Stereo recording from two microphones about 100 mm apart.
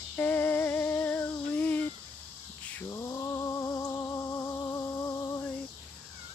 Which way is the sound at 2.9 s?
30° left (ahead or behind).